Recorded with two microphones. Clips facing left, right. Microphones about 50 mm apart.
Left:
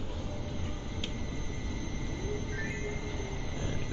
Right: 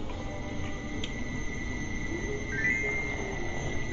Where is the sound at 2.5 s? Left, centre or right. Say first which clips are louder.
Right 8 dB; right.